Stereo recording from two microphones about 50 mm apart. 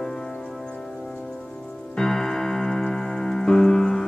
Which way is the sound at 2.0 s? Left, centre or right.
Centre.